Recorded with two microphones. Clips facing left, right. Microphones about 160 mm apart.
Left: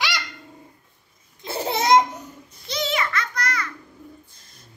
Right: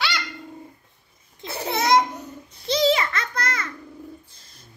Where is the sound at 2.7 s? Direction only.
30° right (ahead or behind).